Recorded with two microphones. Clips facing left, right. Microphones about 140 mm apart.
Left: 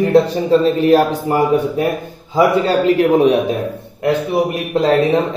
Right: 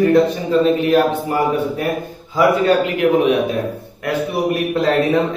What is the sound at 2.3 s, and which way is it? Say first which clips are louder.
Speech: left 1 dB; 30° left (ahead or behind).